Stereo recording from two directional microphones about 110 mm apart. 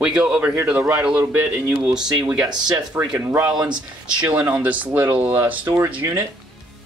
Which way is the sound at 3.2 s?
20° right (ahead or behind).